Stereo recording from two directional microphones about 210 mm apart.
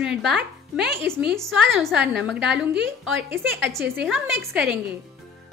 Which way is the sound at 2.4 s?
55° right (ahead or behind).